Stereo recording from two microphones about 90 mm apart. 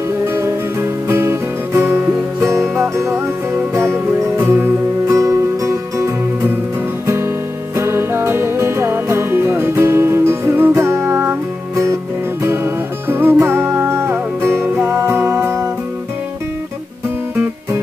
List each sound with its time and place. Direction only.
0.2 s music: 30° right (ahead or behind)
7.7 s music: 30° right (ahead or behind)